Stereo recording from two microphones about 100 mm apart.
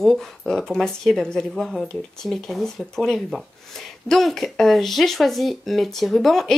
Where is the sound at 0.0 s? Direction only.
Centre (ahead or behind).